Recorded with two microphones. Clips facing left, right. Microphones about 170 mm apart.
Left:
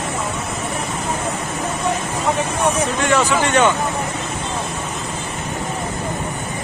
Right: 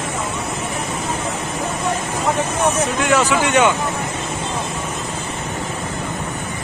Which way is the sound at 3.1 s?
10° right (ahead or behind).